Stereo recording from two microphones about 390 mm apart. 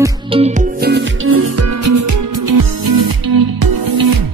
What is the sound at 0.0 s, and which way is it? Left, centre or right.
Music, centre.